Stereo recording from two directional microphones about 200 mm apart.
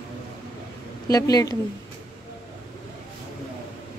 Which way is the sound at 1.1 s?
20° left (ahead or behind).